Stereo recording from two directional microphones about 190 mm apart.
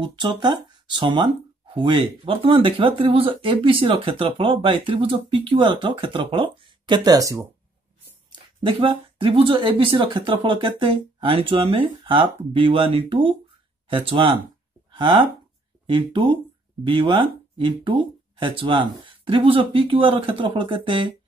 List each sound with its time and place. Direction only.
0.0 s speech: 25° right (ahead or behind)
14.9 s a sound: 25° right (ahead or behind)
15.9 s speech: 25° right (ahead or behind)